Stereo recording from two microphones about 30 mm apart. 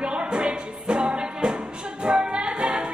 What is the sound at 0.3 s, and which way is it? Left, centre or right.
Music, right.